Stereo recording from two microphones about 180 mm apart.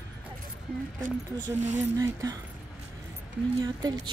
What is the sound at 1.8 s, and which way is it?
Speech, 20° right (ahead or behind).